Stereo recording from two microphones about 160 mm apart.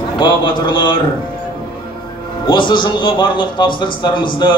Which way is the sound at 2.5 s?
30° left (ahead or behind).